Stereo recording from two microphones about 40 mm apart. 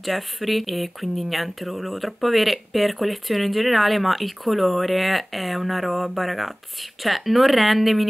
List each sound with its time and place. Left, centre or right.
0.0 s speech: centre